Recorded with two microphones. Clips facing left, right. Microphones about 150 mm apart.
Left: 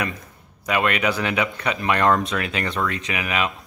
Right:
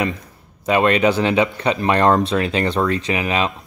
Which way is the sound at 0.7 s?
30° right (ahead or behind).